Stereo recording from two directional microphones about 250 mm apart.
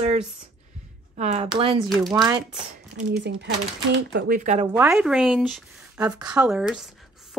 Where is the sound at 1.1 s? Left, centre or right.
Right.